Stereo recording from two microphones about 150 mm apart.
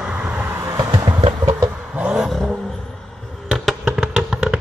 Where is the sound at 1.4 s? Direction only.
10° right (ahead or behind).